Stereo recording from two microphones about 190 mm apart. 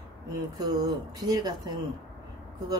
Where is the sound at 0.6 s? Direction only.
20° right (ahead or behind).